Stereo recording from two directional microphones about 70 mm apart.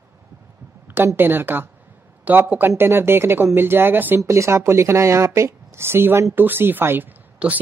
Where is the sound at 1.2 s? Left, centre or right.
Right.